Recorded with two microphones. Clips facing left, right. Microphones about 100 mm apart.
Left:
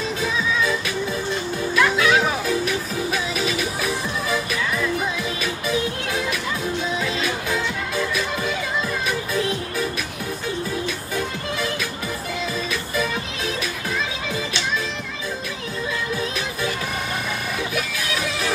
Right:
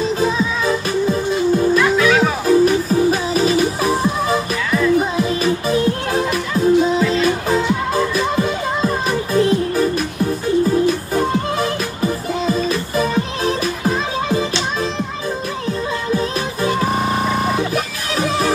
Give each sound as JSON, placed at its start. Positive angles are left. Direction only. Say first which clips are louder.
{"t": 0.2, "sound": "music", "louder": "right 5 dB", "side_deg": -40}
{"t": 16.2, "sound": "music", "louder": "right 6 dB", "side_deg": -35}